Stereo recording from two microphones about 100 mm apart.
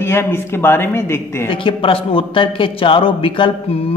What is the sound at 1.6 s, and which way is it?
A man's voice, 60° left (ahead or behind).